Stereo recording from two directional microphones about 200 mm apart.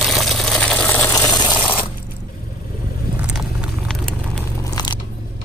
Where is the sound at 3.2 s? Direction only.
5° right (ahead or behind).